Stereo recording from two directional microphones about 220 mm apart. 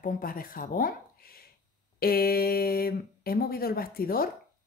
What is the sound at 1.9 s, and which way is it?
A woman's voice, 45° left (ahead or behind).